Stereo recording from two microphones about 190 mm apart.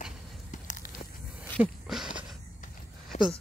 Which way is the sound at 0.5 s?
45° left (ahead or behind).